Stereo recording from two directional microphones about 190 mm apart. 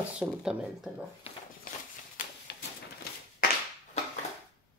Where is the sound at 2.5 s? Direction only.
60° left (ahead or behind).